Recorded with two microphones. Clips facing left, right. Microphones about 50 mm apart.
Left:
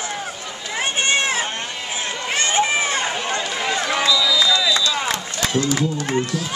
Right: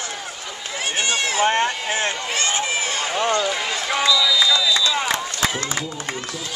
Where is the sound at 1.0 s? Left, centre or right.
Left.